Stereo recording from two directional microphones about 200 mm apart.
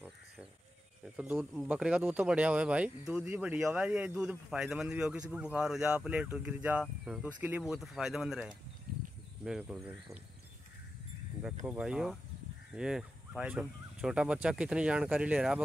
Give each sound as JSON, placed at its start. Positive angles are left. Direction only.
{"t": 1.1, "sound": "speech", "side_deg": -10}
{"t": 11.6, "sound": "speech", "side_deg": -5}